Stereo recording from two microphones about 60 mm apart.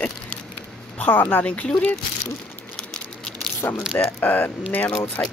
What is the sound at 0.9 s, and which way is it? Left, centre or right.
Speech, left.